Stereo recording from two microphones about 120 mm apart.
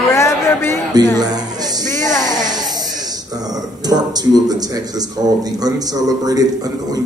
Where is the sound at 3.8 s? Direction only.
35° right (ahead or behind).